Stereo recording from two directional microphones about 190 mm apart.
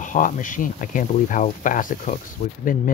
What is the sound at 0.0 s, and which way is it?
Speech, 45° left (ahead or behind).